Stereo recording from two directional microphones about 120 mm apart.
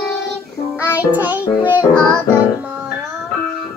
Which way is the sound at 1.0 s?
15° right (ahead or behind).